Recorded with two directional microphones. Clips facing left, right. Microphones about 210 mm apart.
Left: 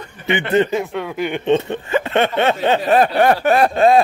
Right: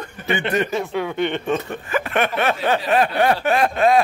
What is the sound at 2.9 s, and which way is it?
Snicker, 45° left (ahead or behind).